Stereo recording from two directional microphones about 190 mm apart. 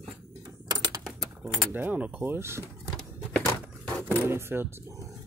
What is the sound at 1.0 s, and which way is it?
Speech, 5° right (ahead or behind).